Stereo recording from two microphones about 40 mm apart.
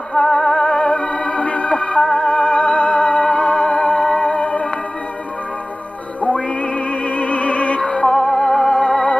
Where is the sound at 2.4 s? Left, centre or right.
Left.